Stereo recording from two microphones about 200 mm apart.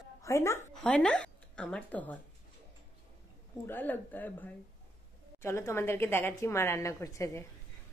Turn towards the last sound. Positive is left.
turn(degrees=15)  # may be behind; listen again after turning